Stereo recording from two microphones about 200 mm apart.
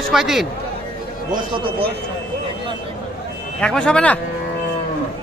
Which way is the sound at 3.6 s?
5° left (ahead or behind).